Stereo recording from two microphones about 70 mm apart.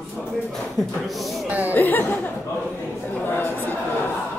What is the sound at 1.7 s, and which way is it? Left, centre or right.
Speech, left.